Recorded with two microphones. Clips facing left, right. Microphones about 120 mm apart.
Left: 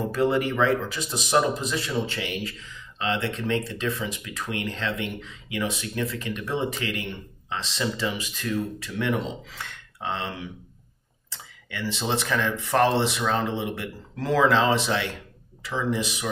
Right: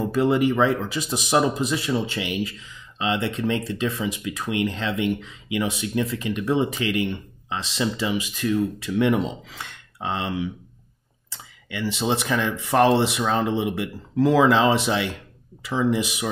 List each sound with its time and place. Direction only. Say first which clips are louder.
0.1 s speech: right 4 dB; 15° right (ahead or behind)
11.7 s speech: right 3 dB; 10° right (ahead or behind)